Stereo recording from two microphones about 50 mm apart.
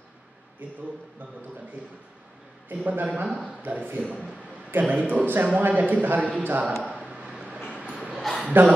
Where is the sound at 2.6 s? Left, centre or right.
Right.